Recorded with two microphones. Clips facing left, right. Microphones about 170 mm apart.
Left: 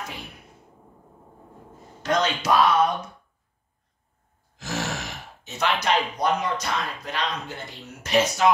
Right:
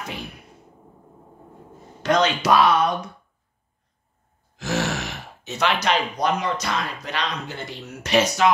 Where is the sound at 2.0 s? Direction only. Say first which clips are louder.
Right 4 dB; 70° right (ahead or behind).